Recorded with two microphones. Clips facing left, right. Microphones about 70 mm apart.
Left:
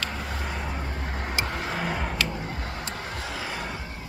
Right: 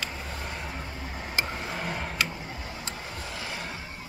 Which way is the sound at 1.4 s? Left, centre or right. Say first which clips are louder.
Left 4 dB; left.